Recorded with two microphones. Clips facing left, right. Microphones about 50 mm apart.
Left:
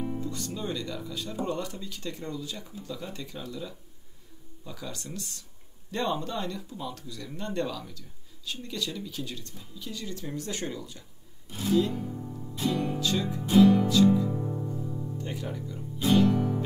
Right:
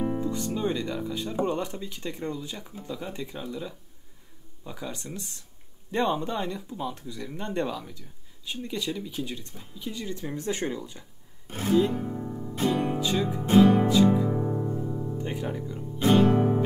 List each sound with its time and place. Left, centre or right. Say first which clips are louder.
0.2 s music: right 6 dB; right
0.5 s speech: right 5 dB; right
11.4 s music: right 2 dB; right
13.0 s music: right 2 dB; right
16.0 s music: right 3 dB; right